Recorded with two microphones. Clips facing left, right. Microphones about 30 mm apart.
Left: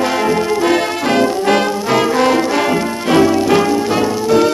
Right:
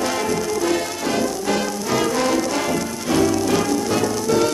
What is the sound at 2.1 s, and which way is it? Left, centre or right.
Brass instrument, left.